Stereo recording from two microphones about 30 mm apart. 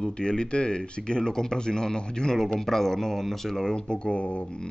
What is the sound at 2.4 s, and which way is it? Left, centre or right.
Speech, centre.